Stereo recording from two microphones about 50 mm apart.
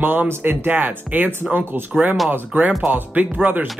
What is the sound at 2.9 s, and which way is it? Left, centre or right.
Speech, right.